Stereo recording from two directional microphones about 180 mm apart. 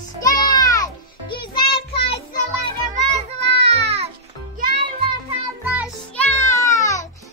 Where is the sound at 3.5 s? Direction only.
35° right (ahead or behind).